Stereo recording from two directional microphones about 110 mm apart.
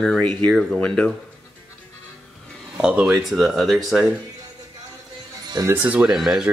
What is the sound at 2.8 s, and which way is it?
Speech, 10° right (ahead or behind).